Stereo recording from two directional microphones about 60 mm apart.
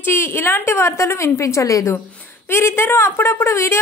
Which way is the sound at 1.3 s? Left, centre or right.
Left.